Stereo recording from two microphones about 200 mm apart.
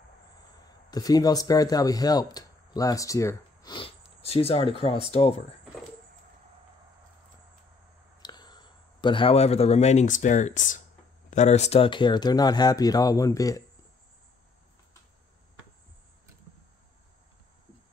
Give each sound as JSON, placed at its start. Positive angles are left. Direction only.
{"t": 0.8, "sound": "speech", "side_deg": 20}
{"t": 8.2, "sound": "speech", "side_deg": 20}